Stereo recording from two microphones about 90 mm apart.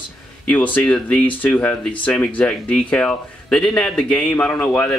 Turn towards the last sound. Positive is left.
turn(degrees=10)  # may be behind; listen again after turning